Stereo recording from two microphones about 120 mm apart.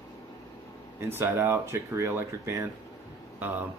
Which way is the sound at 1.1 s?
20° right (ahead or behind).